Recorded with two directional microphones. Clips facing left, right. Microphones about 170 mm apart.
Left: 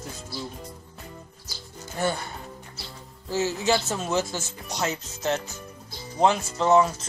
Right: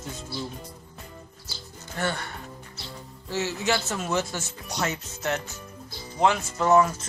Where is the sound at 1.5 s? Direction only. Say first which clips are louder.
Left 2 dB; 10° left (ahead or behind).